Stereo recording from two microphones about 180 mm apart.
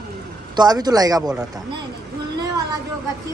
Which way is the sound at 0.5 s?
20° right (ahead or behind).